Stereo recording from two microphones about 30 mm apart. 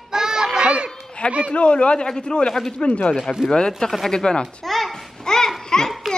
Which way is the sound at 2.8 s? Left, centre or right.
Left.